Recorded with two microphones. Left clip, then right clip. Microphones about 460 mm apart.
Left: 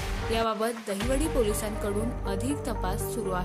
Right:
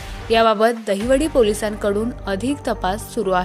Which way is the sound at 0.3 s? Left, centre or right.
Left.